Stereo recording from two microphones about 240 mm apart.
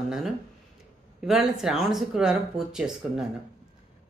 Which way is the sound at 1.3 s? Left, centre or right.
Centre.